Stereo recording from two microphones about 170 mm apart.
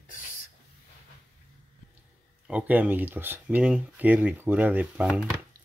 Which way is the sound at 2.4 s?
10° right (ahead or behind).